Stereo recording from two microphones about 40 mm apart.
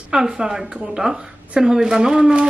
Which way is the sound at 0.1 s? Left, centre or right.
Centre.